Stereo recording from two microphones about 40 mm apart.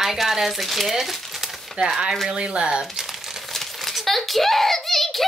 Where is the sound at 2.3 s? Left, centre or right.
Right.